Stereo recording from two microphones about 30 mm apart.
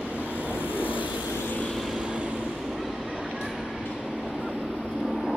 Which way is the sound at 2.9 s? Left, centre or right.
Right.